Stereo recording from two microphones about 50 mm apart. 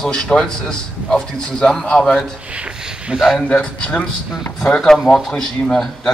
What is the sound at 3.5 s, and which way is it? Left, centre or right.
Speech, centre.